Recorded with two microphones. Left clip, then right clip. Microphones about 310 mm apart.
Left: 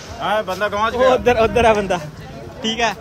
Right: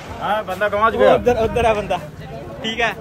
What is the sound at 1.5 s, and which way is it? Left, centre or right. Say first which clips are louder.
Speech: left 3 dB; left.